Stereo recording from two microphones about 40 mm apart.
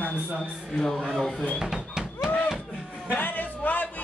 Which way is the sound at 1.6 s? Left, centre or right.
Centre.